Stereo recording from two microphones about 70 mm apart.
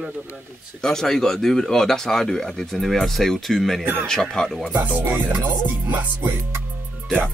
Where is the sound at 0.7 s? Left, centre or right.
Centre.